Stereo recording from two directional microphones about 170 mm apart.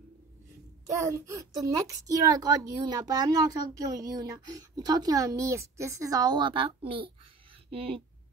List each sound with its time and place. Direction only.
0.9 s a child's voice: 20° right (ahead or behind); by 8.0 s 35° right (ahead or behind)